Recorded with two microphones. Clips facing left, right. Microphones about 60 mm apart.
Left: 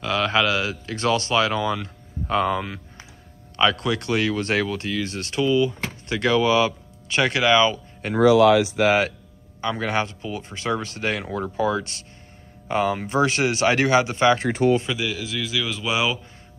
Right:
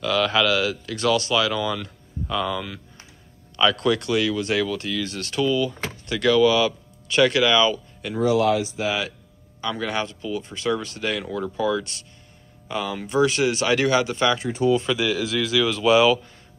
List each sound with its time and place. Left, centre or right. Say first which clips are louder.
0.0 s speech: right 1 dB; left
8.2 s speech: left 5 dB; left
9.6 s speech: left 2 dB; left
14.4 s speech: left 2 dB; left
14.9 s a man's voice: right 4 dB; centre